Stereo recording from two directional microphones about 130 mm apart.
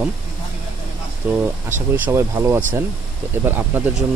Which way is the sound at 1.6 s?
15° right (ahead or behind).